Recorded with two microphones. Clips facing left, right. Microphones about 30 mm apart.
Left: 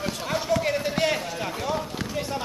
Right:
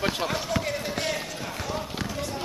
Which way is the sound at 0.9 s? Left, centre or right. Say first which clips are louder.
Left 5 dB; centre.